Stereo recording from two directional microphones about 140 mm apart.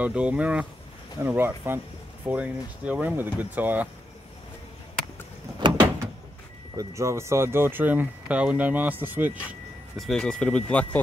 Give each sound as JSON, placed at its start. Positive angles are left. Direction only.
{"t": 0.0, "sound": "speech", "side_deg": -10}
{"t": 5.6, "sound": "door", "side_deg": -35}
{"t": 6.8, "sound": "speech", "side_deg": -20}
{"t": 9.9, "sound": "speech", "side_deg": 5}